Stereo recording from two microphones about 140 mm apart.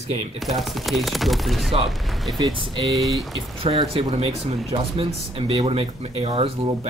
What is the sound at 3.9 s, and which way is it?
Speech, 40° right (ahead or behind).